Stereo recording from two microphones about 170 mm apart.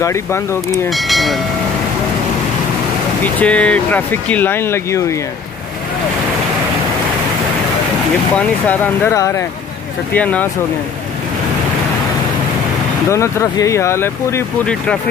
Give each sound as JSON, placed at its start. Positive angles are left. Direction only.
{"t": 0.0, "sound": "speech", "side_deg": 15}
{"t": 0.8, "sound": "speech", "side_deg": 0}
{"t": 3.3, "sound": "speech", "side_deg": 5}
{"t": 8.4, "sound": "speech", "side_deg": 10}
{"t": 13.1, "sound": "speech", "side_deg": 15}